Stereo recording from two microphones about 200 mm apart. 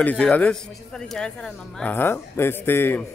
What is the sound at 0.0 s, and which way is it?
Speech, 5° left (ahead or behind).